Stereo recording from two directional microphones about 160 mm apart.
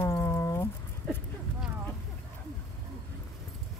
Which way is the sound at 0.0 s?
15° left (ahead or behind).